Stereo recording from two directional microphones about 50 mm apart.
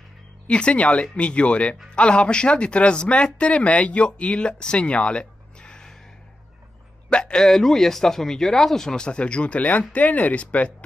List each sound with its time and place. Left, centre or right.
0.5 s speech: left
7.1 s a man's voice: centre
7.4 s speech: centre; by 10.7 s left